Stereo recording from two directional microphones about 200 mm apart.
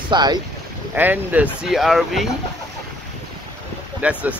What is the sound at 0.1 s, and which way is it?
Speech, 20° right (ahead or behind).